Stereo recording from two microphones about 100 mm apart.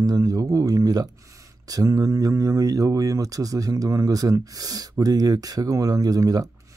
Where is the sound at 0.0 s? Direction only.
35° right (ahead or behind).